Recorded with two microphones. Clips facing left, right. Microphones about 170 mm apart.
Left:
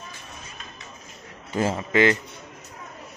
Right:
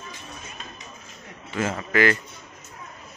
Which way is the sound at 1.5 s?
30° left (ahead or behind).